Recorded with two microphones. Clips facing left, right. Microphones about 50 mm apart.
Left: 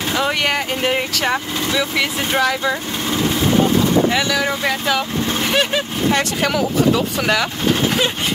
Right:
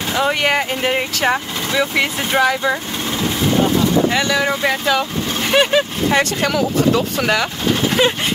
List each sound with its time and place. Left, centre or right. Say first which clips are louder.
0.1 s speech: right 3 dB; centre
4.1 s speech: right 1 dB; centre